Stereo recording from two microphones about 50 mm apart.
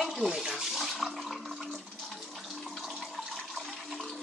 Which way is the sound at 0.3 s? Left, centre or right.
Centre.